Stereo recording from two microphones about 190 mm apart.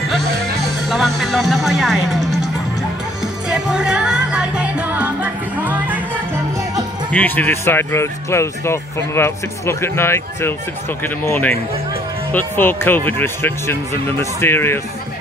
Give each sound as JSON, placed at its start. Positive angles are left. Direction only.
{"t": 0.8, "sound": "speech", "side_deg": 0}
{"t": 3.4, "sound": "music", "side_deg": -5}
{"t": 7.1, "sound": "speech", "side_deg": 10}